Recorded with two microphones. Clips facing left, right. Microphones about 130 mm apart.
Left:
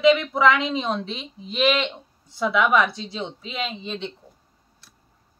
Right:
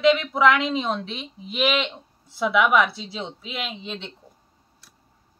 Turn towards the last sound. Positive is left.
turn(degrees=0)  # may be behind; listen again after turning